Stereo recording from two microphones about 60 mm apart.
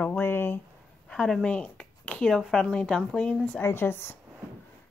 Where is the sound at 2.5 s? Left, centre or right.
Centre.